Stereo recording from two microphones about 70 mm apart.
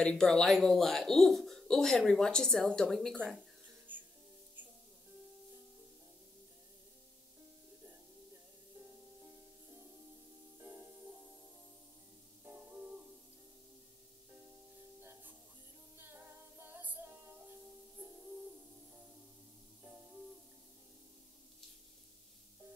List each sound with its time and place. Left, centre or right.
0.0 s speech: centre
3.9 s music: right
10.6 s music: right
12.4 s music: right
15.0 s music: right
19.8 s music: right